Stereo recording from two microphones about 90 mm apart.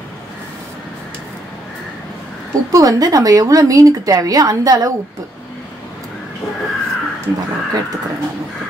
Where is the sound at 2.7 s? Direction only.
45° right (ahead or behind).